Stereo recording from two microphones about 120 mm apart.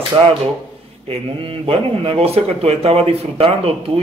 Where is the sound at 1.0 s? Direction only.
55° right (ahead or behind).